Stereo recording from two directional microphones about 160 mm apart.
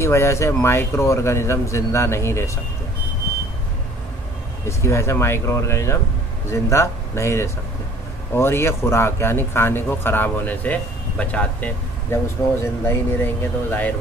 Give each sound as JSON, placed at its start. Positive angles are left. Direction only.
{"t": 0.0, "sound": "speech", "side_deg": 15}
{"t": 4.6, "sound": "speech", "side_deg": 15}